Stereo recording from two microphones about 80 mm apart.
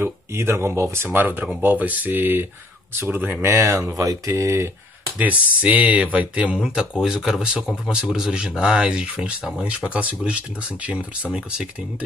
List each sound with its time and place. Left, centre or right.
0.0 s speech: right
3.4 s speech: right
5.2 s speech: centre